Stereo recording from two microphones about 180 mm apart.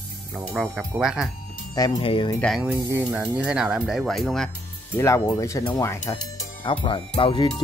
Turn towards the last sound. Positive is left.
turn(degrees=25)  # may be behind; listen again after turning